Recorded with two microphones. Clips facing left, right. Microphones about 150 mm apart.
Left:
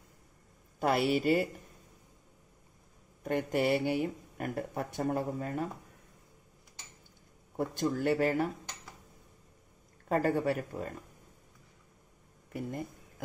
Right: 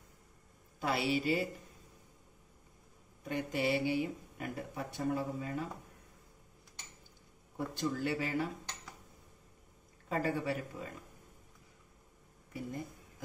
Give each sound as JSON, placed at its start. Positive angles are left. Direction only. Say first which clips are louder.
{"t": 0.7, "sound": "a woman's voice", "louder": "left 5 dB", "side_deg": 50}
{"t": 3.3, "sound": "speech", "louder": "left 5 dB", "side_deg": 50}
{"t": 7.5, "sound": "speech", "louder": "left 5 dB", "side_deg": 50}
{"t": 10.0, "sound": "speech", "louder": "left 6 dB", "side_deg": 50}